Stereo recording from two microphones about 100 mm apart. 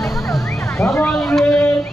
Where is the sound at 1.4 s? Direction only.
15° left (ahead or behind).